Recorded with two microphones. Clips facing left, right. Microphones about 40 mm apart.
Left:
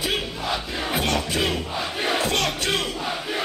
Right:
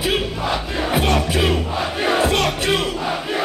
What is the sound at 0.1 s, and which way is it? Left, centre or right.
Music, centre.